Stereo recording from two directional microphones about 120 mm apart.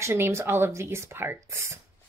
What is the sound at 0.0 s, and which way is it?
Speech, 20° right (ahead or behind).